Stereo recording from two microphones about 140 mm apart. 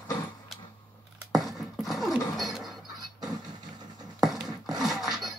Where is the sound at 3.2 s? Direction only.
30° right (ahead or behind).